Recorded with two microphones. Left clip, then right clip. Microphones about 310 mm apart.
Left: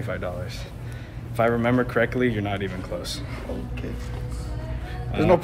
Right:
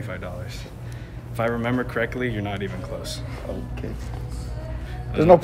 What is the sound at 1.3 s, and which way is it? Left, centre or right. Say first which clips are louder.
Speech: left 3 dB; centre.